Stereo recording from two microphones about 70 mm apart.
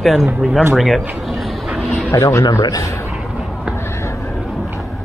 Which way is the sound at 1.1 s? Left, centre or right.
Centre.